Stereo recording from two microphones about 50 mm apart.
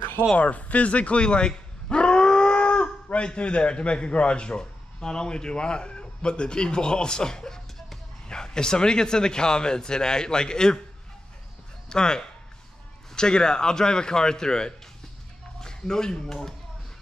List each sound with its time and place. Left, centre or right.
0.4 s speech: left
11.9 s speech: centre